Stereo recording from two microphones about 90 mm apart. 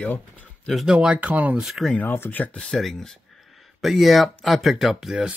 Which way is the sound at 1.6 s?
Centre (ahead or behind).